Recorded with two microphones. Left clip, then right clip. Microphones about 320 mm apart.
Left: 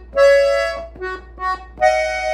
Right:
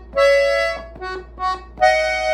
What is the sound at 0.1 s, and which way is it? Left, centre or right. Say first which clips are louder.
Music: left 2 dB; centre.